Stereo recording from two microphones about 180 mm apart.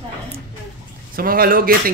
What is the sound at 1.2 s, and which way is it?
Speech, 55° right (ahead or behind).